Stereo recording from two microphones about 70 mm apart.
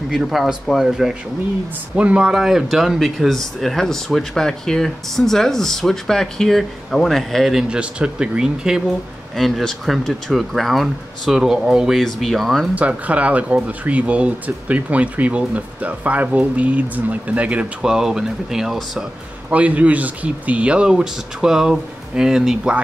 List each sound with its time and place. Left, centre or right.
0.1 s speech: centre
2.0 s speech: centre
7.7 s speech: centre
9.3 s speech: centre
12.7 s speech: right; by 19.0 s centre
19.5 s speech: centre